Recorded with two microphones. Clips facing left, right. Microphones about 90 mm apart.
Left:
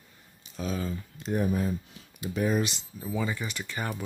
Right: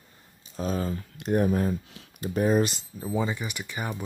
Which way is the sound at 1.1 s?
60° right (ahead or behind).